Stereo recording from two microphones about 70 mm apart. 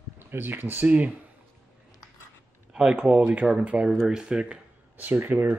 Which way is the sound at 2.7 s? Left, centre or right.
Centre.